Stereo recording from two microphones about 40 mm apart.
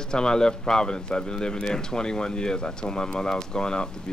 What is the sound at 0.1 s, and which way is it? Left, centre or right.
Speech, centre.